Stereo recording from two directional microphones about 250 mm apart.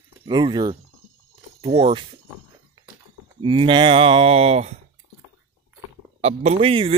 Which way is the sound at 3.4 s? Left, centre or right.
Centre.